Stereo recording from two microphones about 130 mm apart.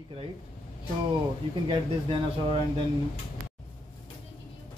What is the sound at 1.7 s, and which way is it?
Speech, 45° right (ahead or behind).